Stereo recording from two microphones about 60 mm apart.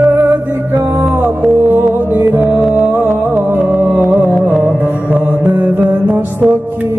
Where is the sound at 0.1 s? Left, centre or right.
Right.